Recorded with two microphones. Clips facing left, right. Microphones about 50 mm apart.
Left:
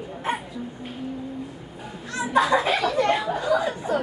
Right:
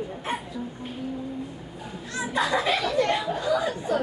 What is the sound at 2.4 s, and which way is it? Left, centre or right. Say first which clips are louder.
Speech: left 4 dB; left.